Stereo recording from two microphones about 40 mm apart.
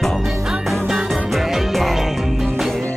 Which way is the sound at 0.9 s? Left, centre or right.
Centre.